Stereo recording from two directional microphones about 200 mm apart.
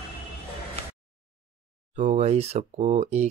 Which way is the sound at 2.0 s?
30° right (ahead or behind).